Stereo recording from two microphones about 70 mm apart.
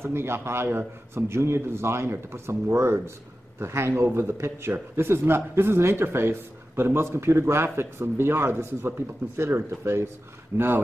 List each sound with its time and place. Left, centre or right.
0.0 s speech: right